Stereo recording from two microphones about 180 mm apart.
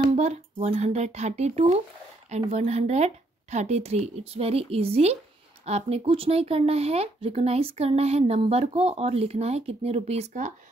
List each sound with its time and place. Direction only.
0.0 s speech: 35° right (ahead or behind)